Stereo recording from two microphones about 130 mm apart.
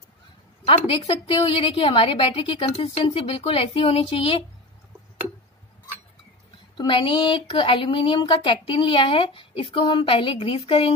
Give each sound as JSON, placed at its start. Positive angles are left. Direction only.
{"t": 0.7, "sound": "a woman's voice", "side_deg": 45}
{"t": 6.8, "sound": "a woman's voice", "side_deg": 40}